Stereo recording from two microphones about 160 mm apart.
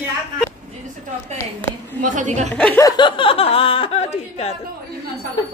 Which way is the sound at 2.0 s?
50° right (ahead or behind).